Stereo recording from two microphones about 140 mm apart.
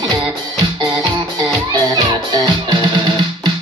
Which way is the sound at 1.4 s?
30° right (ahead or behind).